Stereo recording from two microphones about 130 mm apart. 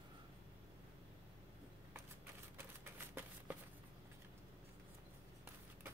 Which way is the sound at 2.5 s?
15° right (ahead or behind).